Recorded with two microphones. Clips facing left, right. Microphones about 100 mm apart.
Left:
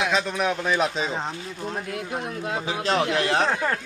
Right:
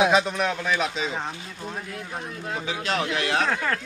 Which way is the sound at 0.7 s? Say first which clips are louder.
Left 2 dB; 35° left (ahead or behind).